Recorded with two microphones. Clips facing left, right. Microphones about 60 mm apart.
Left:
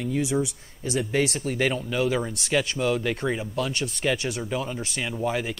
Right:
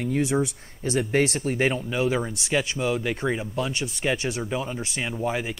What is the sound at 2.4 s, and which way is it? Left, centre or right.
Speech, centre.